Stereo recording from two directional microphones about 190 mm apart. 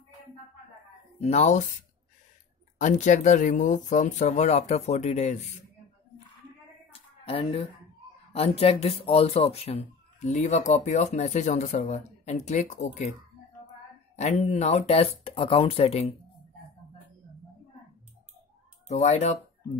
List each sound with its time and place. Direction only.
1.2 s speech: 35° left (ahead or behind)
2.8 s speech: 40° left (ahead or behind)
6.9 s a sound: 30° left (ahead or behind)
8.3 s speech: 30° left (ahead or behind)
14.1 s speech: 35° left (ahead or behind)
18.9 s speech: 40° left (ahead or behind)